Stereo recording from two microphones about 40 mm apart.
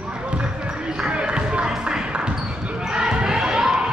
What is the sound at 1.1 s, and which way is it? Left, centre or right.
Music, right.